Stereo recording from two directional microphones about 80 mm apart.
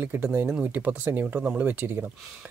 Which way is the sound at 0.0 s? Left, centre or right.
Right.